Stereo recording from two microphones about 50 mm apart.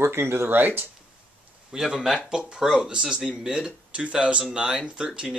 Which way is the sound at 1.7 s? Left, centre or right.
Centre.